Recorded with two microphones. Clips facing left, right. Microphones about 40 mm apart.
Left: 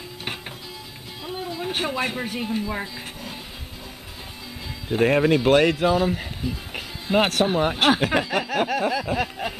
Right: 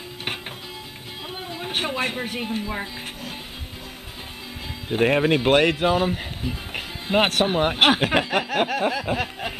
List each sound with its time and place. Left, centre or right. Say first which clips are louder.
1.2 s speech: left 3 dB; right
2.7 s music: even; centre
4.8 s speech: left 1 dB; centre
9.1 s a sound: left 1 dB; centre